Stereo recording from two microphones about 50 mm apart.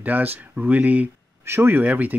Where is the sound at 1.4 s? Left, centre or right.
Right.